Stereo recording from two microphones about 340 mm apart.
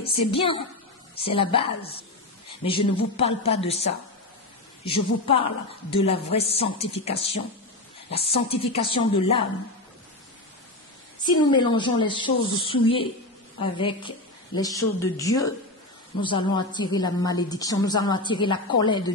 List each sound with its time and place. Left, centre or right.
0.0 s a woman's voice: centre
3.0 s a woman's voice: centre
11.5 s a woman's voice: centre